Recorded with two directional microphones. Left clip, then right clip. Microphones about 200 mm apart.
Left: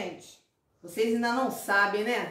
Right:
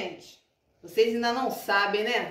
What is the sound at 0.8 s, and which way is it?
A woman's voice, 30° left (ahead or behind).